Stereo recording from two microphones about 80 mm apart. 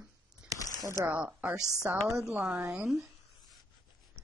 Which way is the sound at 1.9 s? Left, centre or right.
Right.